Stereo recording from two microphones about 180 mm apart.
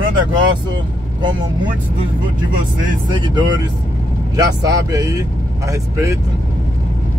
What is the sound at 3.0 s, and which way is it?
Speech, 25° right (ahead or behind).